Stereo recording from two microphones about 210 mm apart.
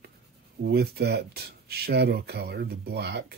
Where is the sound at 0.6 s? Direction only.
50° right (ahead or behind).